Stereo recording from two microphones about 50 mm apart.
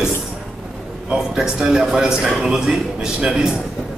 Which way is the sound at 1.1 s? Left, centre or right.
Centre.